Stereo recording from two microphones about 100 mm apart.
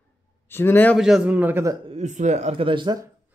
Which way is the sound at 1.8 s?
80° right.